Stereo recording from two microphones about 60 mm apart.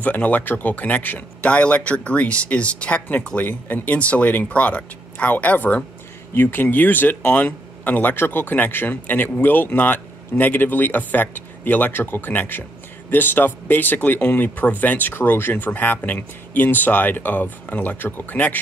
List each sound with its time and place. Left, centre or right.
0.0 s speech: left